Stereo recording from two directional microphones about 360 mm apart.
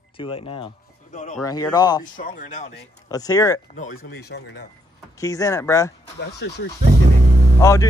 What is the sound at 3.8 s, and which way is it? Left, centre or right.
Speech, left.